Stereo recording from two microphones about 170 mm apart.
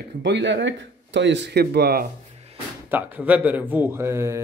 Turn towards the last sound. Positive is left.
turn(degrees=-15)  # may be behind; listen again after turning